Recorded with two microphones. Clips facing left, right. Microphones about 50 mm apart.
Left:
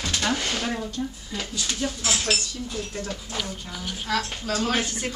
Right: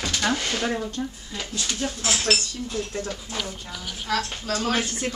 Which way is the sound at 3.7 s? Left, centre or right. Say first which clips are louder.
Left 1 dB; left.